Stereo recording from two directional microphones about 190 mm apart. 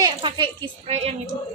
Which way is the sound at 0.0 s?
25° right (ahead or behind).